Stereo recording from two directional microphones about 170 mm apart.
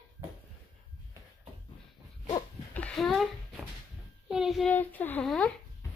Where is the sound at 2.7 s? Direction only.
5° left (ahead or behind).